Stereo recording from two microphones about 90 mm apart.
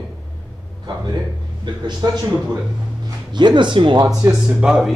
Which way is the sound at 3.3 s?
60° right (ahead or behind).